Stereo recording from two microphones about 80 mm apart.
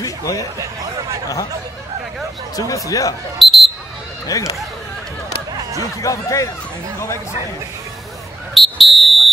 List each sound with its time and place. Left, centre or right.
0.0 s a sound: left
2.5 s speech: left
3.3 s basketball bounce: centre
4.3 s speech: left
6.0 s speech: left
8.5 s fire alarm: centre